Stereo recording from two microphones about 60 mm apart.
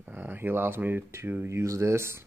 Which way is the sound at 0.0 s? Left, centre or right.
Right.